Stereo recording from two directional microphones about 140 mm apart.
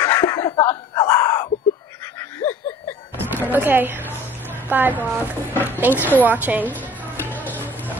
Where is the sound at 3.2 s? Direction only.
15° right (ahead or behind).